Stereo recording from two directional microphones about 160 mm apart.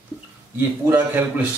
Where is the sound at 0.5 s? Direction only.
15° right (ahead or behind).